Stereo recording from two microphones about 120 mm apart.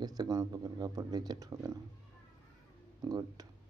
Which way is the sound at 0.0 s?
35° right (ahead or behind).